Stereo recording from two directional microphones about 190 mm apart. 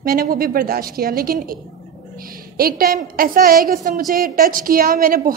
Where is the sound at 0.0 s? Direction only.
50° right (ahead or behind).